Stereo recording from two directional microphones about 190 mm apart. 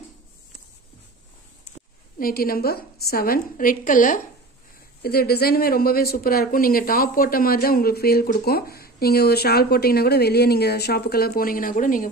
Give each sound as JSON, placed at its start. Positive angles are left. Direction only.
{"t": 2.1, "sound": "speech", "side_deg": 50}